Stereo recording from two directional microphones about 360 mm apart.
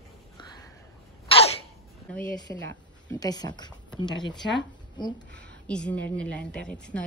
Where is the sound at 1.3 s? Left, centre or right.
Centre.